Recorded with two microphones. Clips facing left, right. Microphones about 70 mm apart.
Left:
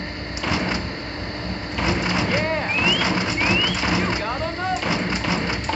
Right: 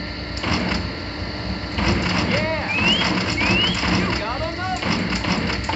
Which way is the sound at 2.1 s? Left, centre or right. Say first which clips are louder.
Even; centre.